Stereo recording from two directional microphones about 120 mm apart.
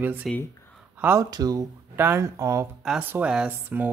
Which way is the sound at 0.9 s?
20° right (ahead or behind).